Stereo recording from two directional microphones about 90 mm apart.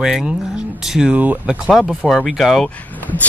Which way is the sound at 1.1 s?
15° right (ahead or behind).